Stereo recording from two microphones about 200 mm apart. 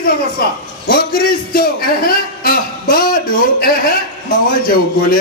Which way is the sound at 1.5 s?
45° left (ahead or behind).